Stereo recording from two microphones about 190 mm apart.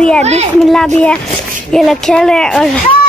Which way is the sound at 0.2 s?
35° right (ahead or behind).